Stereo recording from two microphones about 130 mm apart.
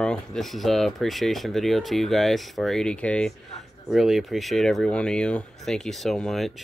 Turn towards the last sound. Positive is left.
turn(degrees=0)  # may be behind; listen again after turning